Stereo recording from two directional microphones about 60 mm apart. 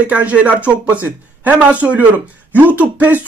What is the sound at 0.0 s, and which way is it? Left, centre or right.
Speech, right.